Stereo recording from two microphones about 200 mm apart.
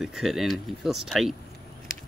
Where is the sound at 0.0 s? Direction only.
Centre (ahead or behind).